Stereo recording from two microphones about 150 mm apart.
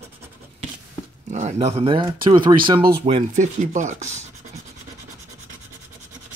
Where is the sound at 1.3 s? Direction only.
50° right (ahead or behind); by 2.5 s 30° right (ahead or behind).